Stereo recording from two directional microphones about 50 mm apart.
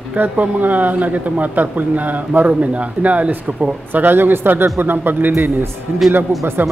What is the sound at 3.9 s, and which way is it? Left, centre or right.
Speech, right.